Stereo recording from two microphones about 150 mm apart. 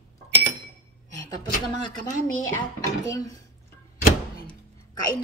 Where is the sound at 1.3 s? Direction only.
25° left (ahead or behind).